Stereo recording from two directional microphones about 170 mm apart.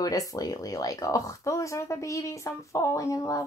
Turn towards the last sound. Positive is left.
turn(degrees=20)  # may be behind; listen again after turning